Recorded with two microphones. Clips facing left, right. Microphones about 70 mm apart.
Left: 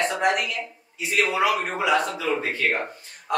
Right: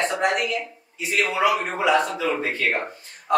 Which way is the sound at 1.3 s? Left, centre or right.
Centre.